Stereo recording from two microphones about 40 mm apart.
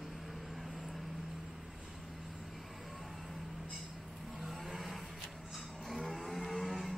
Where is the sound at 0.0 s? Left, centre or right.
Centre.